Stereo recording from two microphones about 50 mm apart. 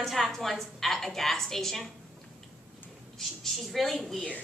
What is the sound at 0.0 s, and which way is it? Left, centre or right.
A woman's voice, centre.